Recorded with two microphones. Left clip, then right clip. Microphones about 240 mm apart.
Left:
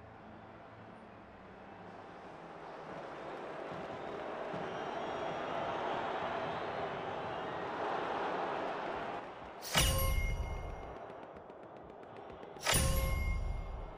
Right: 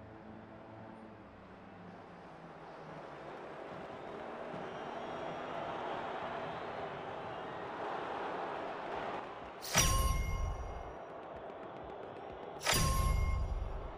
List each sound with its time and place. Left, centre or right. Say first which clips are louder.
2.9 s vehicle: left 3 dB; left
8.9 s music: right 1 dB; centre
12.6 s music: even; centre